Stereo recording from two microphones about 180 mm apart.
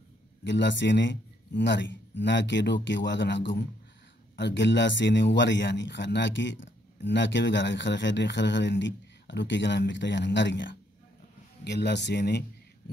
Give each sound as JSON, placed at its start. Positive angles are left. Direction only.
{"t": 0.4, "sound": "speech", "side_deg": 80}
{"t": 11.6, "sound": "speech", "side_deg": 70}